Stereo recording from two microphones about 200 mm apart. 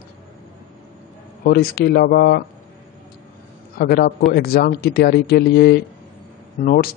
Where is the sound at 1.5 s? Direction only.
50° left (ahead or behind).